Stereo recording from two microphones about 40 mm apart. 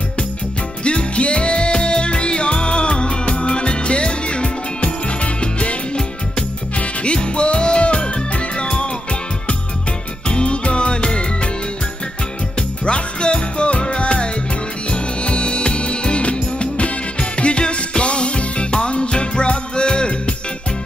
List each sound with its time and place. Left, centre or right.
0.8 s music: left
10.2 s music: left
12.5 s music: left